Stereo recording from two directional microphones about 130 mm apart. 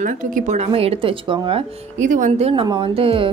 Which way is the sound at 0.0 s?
80° right.